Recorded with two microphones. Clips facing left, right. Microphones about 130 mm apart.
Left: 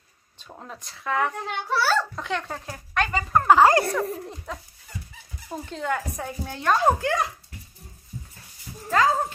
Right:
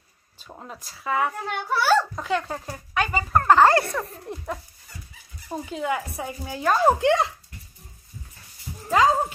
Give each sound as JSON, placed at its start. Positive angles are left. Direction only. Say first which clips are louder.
{"t": 0.4, "sound": "a child's voice", "louder": "right 1 dB", "side_deg": -5}
{"t": 2.2, "sound": "a child's voice", "louder": "right 3 dB", "side_deg": 0}
{"t": 4.5, "sound": "speech", "louder": "right 3 dB", "side_deg": -10}
{"t": 7.0, "sound": "speech", "louder": "right 5 dB", "side_deg": -25}
{"t": 8.8, "sound": "cat", "louder": "right 2 dB", "side_deg": -15}